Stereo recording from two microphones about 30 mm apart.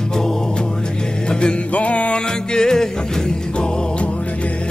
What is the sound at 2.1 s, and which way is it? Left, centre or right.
Music, left.